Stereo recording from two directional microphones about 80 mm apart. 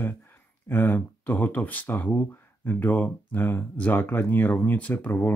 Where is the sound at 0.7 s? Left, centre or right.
Left.